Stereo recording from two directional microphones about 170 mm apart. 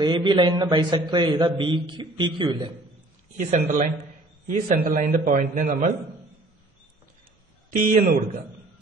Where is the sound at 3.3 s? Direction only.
45° right (ahead or behind).